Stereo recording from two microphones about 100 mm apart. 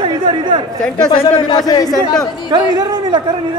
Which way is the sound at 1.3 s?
50° left (ahead or behind).